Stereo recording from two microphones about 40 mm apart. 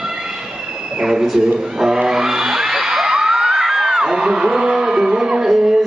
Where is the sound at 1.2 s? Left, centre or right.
Centre.